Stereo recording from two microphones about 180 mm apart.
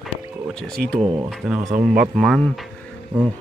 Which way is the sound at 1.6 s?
20° right (ahead or behind).